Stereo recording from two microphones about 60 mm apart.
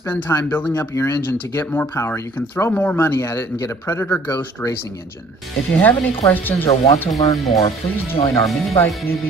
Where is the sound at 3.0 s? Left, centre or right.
Left.